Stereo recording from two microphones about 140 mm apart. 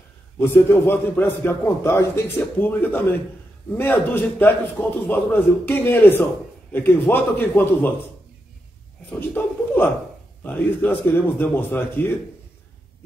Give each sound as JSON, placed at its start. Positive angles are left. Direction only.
{"t": 0.4, "sound": "a man's voice", "side_deg": 15}
{"t": 9.1, "sound": "a man's voice", "side_deg": 10}